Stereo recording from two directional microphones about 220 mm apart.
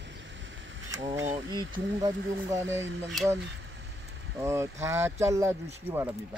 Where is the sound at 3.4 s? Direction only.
55° right (ahead or behind).